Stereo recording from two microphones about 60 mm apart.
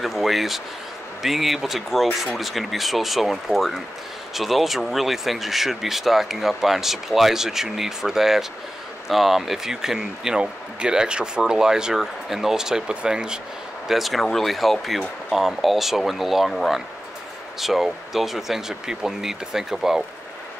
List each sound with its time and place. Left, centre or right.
0.0 s speech: centre
13.8 s speech: centre